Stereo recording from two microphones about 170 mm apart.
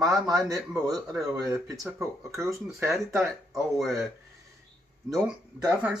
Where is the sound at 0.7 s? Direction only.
20° right (ahead or behind).